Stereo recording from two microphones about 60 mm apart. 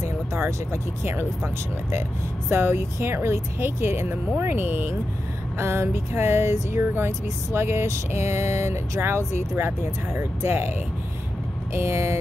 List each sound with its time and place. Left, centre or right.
0.3 s vehicle: right
2.5 s speech: right
5.6 s speech: right
11.7 s speech: right